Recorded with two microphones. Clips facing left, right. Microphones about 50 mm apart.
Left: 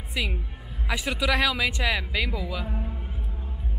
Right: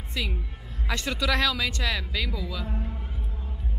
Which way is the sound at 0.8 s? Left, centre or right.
Centre.